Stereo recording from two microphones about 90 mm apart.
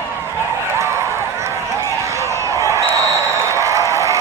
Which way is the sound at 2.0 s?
35° right (ahead or behind).